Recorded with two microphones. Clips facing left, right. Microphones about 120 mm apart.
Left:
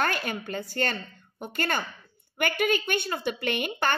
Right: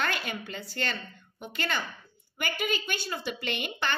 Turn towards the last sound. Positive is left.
turn(degrees=50)  # may be behind; listen again after turning